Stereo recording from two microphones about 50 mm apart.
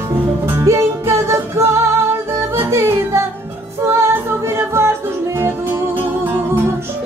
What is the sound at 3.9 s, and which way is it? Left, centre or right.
Music, right.